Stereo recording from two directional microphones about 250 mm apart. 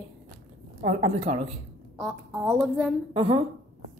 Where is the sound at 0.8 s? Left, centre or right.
Right.